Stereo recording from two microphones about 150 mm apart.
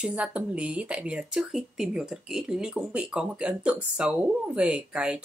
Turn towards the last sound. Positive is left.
turn(degrees=-5)  # may be behind; listen again after turning